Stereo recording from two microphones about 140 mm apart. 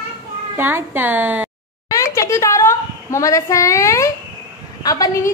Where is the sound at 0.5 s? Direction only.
15° right (ahead or behind).